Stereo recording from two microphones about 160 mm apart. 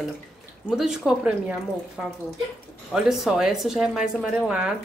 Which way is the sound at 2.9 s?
Centre (ahead or behind).